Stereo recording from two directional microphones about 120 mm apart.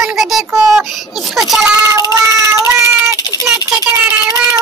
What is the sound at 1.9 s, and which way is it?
Child singing, 25° right (ahead or behind).